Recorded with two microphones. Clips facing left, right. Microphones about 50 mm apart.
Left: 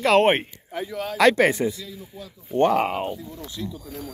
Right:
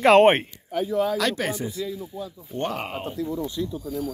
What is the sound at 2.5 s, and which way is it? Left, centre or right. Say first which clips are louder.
Speech: left 9 dB; left.